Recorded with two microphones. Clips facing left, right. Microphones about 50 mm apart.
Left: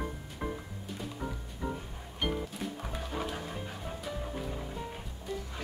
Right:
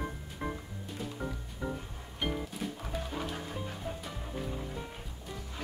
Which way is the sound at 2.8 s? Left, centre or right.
Centre.